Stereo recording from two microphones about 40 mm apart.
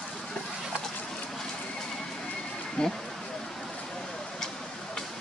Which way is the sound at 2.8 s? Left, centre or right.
Centre.